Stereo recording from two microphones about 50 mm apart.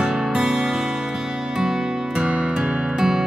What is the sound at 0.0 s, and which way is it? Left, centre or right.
Music, centre.